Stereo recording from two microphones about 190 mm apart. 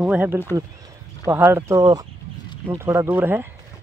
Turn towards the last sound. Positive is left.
turn(degrees=-10)  # may be behind; listen again after turning